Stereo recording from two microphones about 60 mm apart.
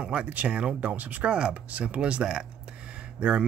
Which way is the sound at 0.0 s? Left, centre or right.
Right.